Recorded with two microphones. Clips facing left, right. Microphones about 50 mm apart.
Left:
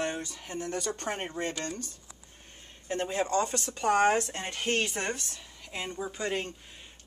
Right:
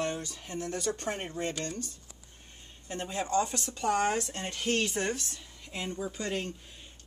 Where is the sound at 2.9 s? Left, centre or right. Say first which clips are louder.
Left 3 dB; left.